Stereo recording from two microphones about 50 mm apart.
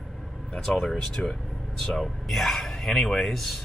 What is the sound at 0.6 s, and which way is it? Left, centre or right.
Speech, centre.